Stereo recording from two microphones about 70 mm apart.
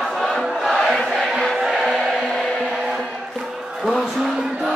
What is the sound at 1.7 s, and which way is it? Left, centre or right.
Music, centre.